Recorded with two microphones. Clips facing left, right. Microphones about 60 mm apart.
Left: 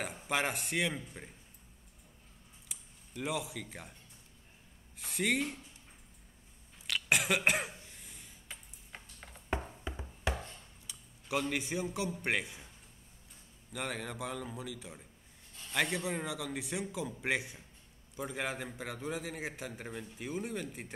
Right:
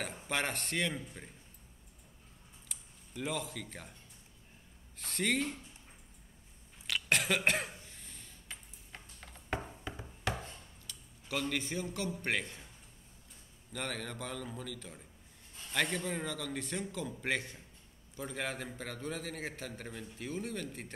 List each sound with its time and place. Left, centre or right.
0.0 s a man's voice: centre
2.7 s speech: centre
4.9 s a man's voice: centre
6.9 s cough: centre
9.9 s a sound: centre
10.9 s a man's voice: centre